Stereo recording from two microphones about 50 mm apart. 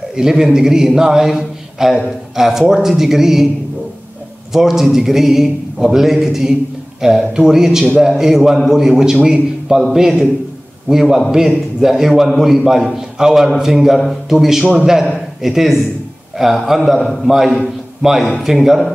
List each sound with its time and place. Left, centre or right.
0.1 s a man's voice: centre
4.5 s a man's voice: centre
17.0 s a man's voice: centre
17.3 s a man's voice: centre